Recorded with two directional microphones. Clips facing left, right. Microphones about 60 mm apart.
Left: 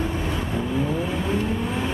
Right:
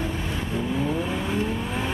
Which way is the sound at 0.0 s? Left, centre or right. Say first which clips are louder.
Left 3 dB; centre.